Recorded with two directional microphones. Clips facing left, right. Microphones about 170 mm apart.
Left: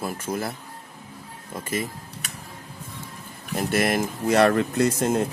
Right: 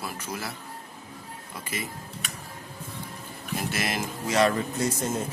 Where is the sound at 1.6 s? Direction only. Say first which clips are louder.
Left 7 dB; 50° left (ahead or behind).